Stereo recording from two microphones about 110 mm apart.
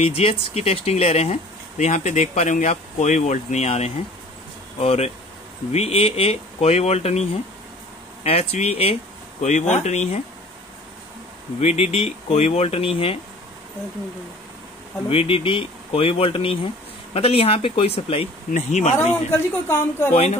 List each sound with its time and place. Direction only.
0.0 s speech: 65° left (ahead or behind)
1.9 s speech: 90° left; by 8.9 s 65° left (ahead or behind)
9.4 s speech: 90° left
11.6 s speech: 70° left (ahead or behind)
15.0 s speech: 60° left (ahead or behind); by 18.9 s 90° left
19.3 s speech: 20° left (ahead or behind)